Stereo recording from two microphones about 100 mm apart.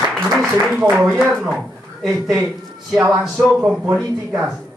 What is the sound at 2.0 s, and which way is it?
A man's voice, centre (ahead or behind).